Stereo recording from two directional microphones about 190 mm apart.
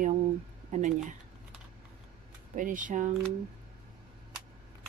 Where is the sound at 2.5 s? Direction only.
45° right (ahead or behind).